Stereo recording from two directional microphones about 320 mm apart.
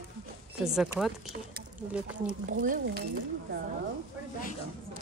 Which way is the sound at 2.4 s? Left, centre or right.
Right.